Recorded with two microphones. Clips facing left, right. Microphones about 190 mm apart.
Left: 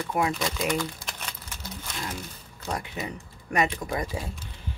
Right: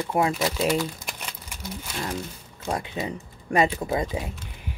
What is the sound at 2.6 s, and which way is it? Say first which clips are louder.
Speech: right 4 dB; 25° right (ahead or behind).